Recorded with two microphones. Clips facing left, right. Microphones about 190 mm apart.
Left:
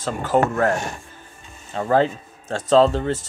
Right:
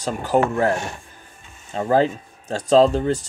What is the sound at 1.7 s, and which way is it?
A man's voice, 15° right (ahead or behind).